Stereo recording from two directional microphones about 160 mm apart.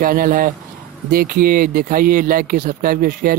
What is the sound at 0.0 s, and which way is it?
Speech, 60° right (ahead or behind).